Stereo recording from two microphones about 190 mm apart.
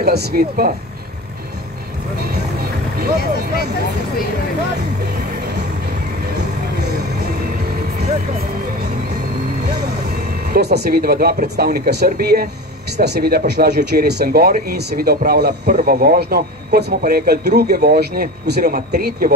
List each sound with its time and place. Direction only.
0.0 s speech: 55° right (ahead or behind)
6.3 s music: 60° right (ahead or behind)
10.5 s speech: 60° right (ahead or behind)